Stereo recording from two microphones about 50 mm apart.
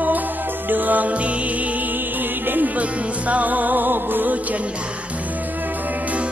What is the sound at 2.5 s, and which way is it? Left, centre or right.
Music, right.